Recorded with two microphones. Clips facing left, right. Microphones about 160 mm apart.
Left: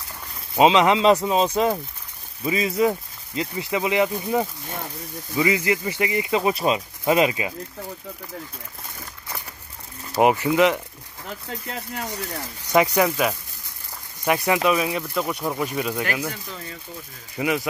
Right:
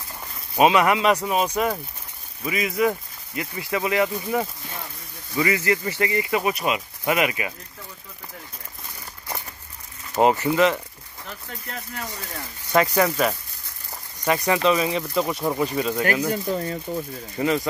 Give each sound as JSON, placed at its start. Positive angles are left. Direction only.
{"t": 0.6, "sound": "speech", "side_deg": 20}
{"t": 10.2, "sound": "speech", "side_deg": 15}
{"t": 12.1, "sound": "speech", "side_deg": 15}
{"t": 16.4, "sound": "speech", "side_deg": -40}
{"t": 17.4, "sound": "speech", "side_deg": 10}